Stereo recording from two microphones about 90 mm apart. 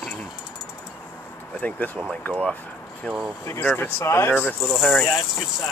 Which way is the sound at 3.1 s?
10° left (ahead or behind).